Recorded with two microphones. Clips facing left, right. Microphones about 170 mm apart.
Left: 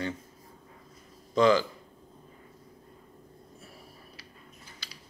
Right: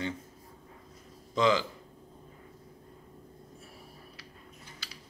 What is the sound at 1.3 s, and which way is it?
Speech, 20° right (ahead or behind).